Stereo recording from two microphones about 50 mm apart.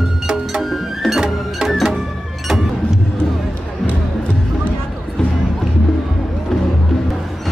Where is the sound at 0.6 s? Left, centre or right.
Centre.